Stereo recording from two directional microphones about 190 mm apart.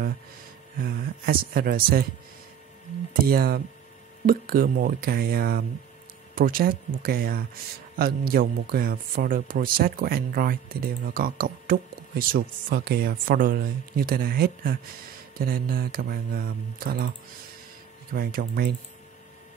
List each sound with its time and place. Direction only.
0.7 s speech: 50° right (ahead or behind)
3.1 s speech: 50° right (ahead or behind)
18.1 s speech: 50° right (ahead or behind)